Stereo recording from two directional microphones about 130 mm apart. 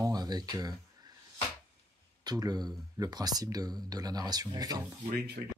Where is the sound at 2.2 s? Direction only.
30° right (ahead or behind).